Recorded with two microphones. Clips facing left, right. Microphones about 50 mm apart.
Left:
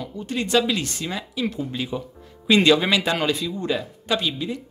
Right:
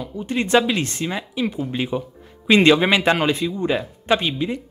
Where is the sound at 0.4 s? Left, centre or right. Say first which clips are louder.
Right 3 dB; right.